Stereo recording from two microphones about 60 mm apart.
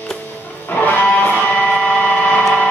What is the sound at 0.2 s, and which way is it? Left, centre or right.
Music, left.